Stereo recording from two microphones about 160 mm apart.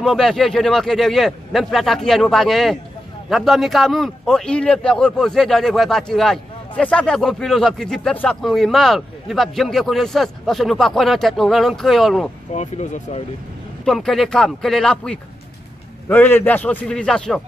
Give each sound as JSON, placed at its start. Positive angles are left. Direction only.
{"t": 0.0, "sound": "a man's voice", "side_deg": 0}
{"t": 12.5, "sound": "speech", "side_deg": 45}
{"t": 13.8, "sound": "a man's voice", "side_deg": 0}